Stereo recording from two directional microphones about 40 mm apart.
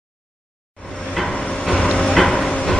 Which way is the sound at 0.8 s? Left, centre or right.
Centre.